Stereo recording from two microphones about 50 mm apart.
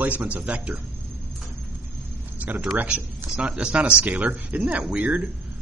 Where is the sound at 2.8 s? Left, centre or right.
Right.